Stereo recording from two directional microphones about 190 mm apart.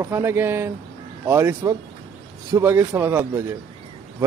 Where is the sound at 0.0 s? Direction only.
15° right (ahead or behind).